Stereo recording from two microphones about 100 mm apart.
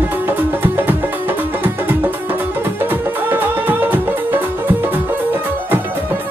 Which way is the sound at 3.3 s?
20° right (ahead or behind).